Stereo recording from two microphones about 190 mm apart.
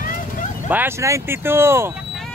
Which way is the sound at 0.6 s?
10° right (ahead or behind).